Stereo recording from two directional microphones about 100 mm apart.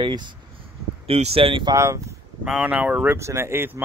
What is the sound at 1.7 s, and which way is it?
Speech, 30° right (ahead or behind).